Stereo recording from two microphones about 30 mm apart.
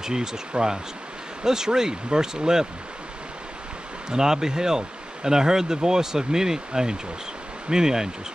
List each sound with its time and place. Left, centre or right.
0.0 s speech: centre
1.4 s speech: right
4.1 s speech: centre